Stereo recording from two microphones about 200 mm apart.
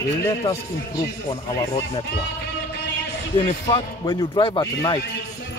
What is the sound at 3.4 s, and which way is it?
Speech, 25° left (ahead or behind).